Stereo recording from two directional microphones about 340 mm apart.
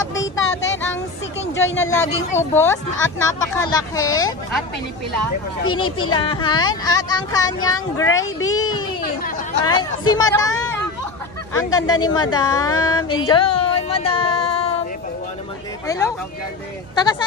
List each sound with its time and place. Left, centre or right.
0.1 s a sound: left
2.0 s speech: centre
5.6 s speech: left
6.0 s speech: centre
8.1 s speech: left
8.5 s speech: centre
12.5 s speech: left
13.3 s speech: centre
15.9 s speech: centre